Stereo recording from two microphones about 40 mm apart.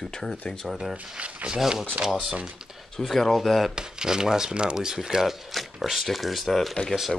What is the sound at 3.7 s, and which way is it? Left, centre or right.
Speech, centre.